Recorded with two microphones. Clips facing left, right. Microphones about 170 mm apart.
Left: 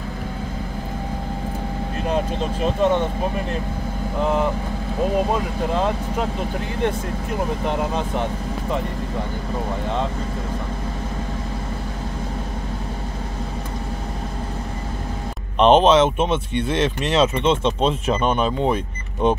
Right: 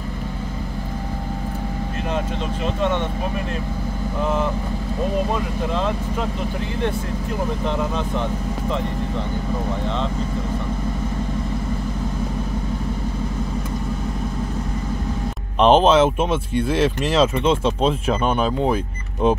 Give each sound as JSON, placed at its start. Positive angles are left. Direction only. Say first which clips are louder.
{"t": 2.6, "sound": "speech", "louder": "left 4 dB", "side_deg": 35}
{"t": 7.6, "sound": "speech", "louder": "even", "side_deg": 15}
{"t": 15.6, "sound": "speech", "louder": "even", "side_deg": -5}